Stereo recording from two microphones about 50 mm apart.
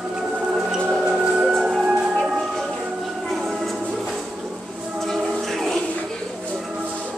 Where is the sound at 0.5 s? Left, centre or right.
Centre.